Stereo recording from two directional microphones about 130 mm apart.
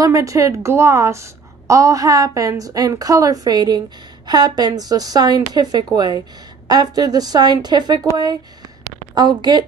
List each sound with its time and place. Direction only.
0.0 s a woman's voice: 25° right (ahead or behind)